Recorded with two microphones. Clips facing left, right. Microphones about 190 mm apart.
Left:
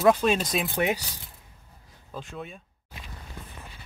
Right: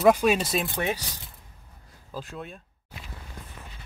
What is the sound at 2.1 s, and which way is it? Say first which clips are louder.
Speech: right 1 dB; centre (ahead or behind).